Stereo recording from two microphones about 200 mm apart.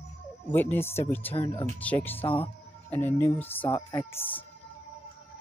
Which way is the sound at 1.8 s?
5° left (ahead or behind).